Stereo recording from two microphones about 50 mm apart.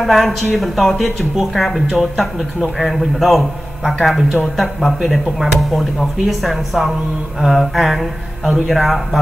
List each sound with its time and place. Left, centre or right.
0.0 s a man's voice: centre